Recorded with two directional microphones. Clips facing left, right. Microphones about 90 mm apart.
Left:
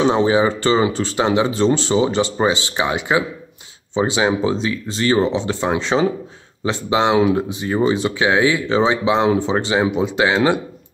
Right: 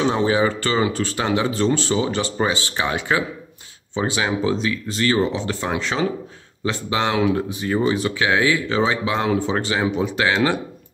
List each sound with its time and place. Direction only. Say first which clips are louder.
0.0 s speech: left 3 dB; 20° left (ahead or behind)